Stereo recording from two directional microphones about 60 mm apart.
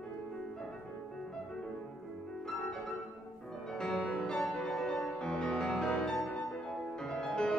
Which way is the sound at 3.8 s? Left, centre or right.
Centre.